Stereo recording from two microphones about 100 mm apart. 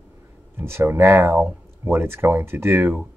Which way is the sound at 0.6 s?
25° right (ahead or behind).